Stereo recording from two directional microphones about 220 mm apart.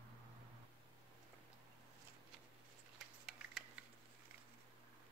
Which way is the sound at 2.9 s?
Centre (ahead or behind).